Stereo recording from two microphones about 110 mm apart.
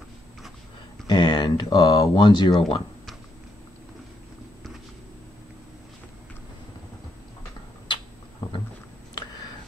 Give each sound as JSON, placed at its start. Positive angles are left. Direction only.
{"t": 1.0, "sound": "speech", "side_deg": 40}